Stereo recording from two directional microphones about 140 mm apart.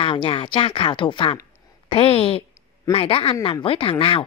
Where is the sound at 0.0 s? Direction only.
40° left (ahead or behind).